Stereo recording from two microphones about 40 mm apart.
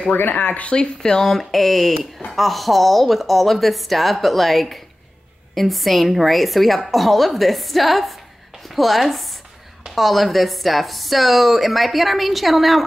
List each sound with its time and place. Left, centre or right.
0.1 s speech: left
0.7 s speech: centre